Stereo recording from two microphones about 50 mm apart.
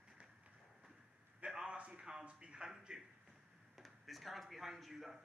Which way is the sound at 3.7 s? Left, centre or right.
Centre.